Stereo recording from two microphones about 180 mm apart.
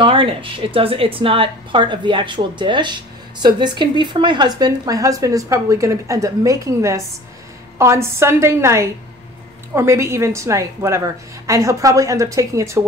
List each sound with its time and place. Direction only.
0.0 s a woman's voice: 30° right (ahead or behind)